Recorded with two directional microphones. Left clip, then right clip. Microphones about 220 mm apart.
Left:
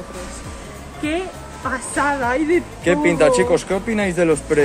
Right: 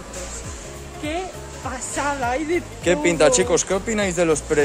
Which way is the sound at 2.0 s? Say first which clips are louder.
Left 4 dB; 30° left (ahead or behind).